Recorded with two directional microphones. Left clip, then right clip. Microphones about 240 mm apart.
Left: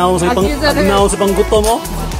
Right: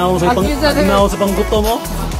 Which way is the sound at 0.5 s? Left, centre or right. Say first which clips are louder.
Even; centre.